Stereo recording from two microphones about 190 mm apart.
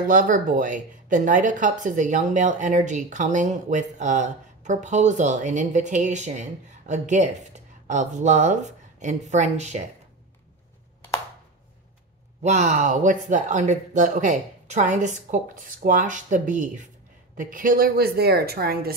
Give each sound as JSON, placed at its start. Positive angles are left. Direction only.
{"t": 0.0, "sound": "speech", "side_deg": -45}
{"t": 12.4, "sound": "a woman's voice", "side_deg": -40}